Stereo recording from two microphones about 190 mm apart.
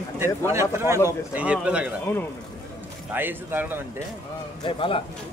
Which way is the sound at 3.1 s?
10° right (ahead or behind).